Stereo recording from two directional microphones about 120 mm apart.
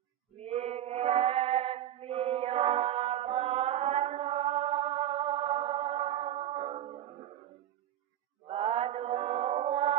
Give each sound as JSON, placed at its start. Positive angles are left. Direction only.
{"t": 0.4, "sound": "chant", "side_deg": -60}
{"t": 8.5, "sound": "mantra", "side_deg": -55}